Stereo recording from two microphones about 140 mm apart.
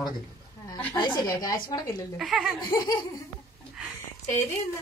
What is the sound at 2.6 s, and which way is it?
Speech, 25° left (ahead or behind).